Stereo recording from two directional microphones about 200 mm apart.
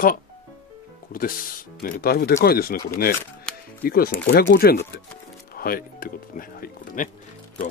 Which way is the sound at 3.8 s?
50° left (ahead or behind).